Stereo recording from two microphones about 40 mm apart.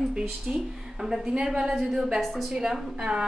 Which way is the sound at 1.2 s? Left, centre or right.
Right.